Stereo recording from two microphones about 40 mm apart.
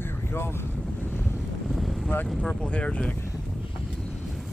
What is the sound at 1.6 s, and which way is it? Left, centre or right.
Vehicle, centre.